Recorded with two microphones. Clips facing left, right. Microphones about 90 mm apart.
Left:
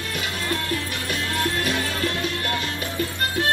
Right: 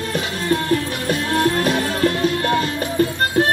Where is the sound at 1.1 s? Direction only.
40° right (ahead or behind).